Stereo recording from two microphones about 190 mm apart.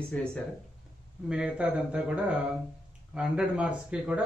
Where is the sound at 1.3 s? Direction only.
5° right (ahead or behind).